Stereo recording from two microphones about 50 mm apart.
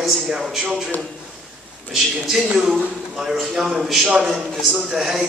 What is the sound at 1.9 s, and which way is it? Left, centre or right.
A man's voice, centre.